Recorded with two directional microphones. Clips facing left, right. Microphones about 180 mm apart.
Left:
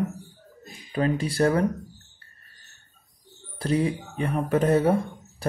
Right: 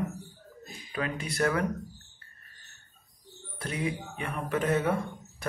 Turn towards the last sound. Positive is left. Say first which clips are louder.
# left 7 dB
turn(degrees=35)  # may be behind; listen again after turning